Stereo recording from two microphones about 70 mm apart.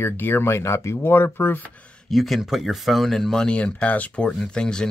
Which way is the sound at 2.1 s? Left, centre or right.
Centre.